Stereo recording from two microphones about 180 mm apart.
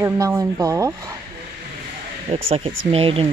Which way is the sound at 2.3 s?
30° right (ahead or behind).